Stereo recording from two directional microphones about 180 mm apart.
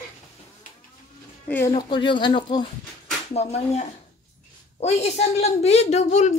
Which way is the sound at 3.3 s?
35° left (ahead or behind).